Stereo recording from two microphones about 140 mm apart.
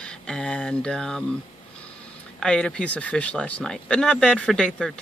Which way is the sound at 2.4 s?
5° left (ahead or behind).